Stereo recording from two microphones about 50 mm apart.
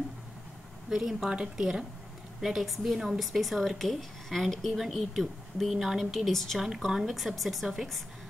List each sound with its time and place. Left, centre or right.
0.8 s a woman's voice: centre
2.4 s speech: centre
6.6 s speech: centre